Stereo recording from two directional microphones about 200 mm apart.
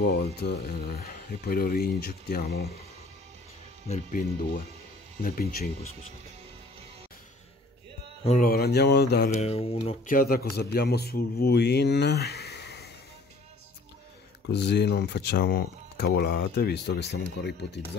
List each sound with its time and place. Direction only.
0.0 s a man's voice: 50° left (ahead or behind)
3.9 s a man's voice: 45° left (ahead or behind)
8.4 s a man's voice: 50° left (ahead or behind)
9.3 s speech: 30° left (ahead or behind)
10.0 s a man's voice: 45° left (ahead or behind)
14.5 s speech: 60° left (ahead or behind)